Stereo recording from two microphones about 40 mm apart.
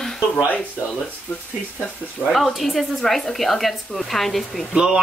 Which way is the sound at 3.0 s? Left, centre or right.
Centre.